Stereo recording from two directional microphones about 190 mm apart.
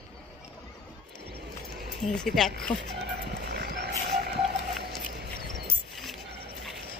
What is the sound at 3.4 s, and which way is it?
Vehicle, 60° right (ahead or behind).